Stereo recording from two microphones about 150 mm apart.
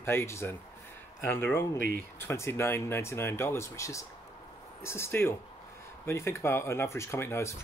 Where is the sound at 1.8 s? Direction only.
75° right (ahead or behind).